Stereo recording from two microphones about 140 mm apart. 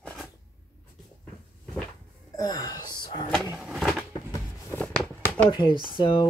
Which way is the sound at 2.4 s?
30° left (ahead or behind).